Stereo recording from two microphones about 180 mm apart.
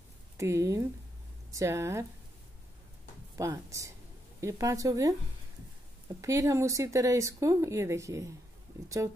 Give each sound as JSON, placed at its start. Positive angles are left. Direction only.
{"t": 0.4, "sound": "speech", "side_deg": -15}
{"t": 3.3, "sound": "speech", "side_deg": -15}
{"t": 6.2, "sound": "speech", "side_deg": -15}